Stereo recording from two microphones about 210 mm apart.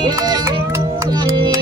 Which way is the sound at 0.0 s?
20° right (ahead or behind).